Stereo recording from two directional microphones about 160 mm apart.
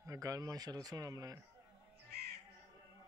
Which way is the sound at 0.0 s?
20° right (ahead or behind).